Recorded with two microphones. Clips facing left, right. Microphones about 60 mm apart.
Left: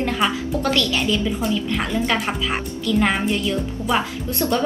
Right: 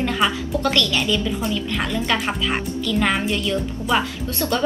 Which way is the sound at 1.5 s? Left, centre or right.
Centre.